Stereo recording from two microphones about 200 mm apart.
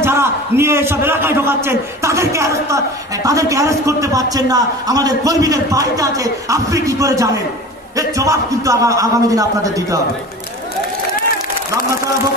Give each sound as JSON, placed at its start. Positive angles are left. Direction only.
{"t": 0.0, "sound": "a man's voice", "side_deg": -10}